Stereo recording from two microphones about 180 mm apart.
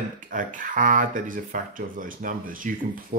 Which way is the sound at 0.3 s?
50° right (ahead or behind).